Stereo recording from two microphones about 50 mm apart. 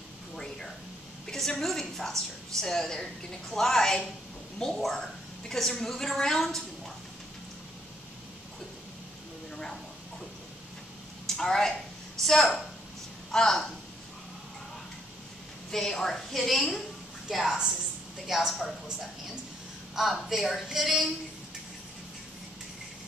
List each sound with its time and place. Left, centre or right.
1.2 s a woman's voice: centre
11.2 s a sound: centre
12.2 s a woman's voice: centre
15.7 s a woman's voice: centre
18.5 s a woman's voice: centre